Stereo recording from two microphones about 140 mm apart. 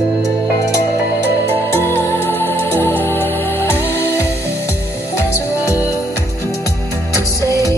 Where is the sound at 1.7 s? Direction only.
15° left (ahead or behind).